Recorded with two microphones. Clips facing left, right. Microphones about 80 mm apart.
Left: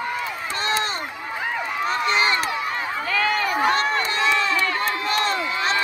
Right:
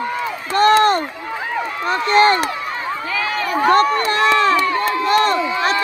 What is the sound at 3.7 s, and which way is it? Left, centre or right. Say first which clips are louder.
Run: right 7 dB; right.